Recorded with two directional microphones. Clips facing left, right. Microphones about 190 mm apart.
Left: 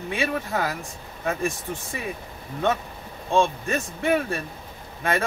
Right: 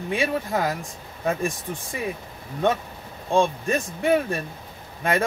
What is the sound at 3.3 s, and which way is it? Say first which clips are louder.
Speech: right 1 dB; 15° right (ahead or behind).